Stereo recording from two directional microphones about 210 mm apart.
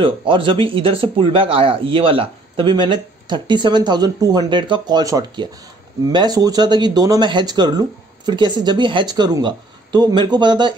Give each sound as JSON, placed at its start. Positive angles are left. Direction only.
{"t": 0.0, "sound": "speech", "side_deg": -25}